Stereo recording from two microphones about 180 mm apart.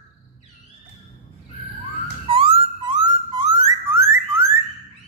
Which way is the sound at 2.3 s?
30° right (ahead or behind).